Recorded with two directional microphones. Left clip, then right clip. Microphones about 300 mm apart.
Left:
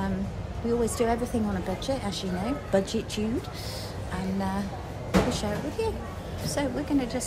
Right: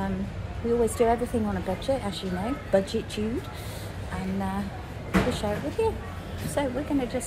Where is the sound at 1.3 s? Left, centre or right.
Centre.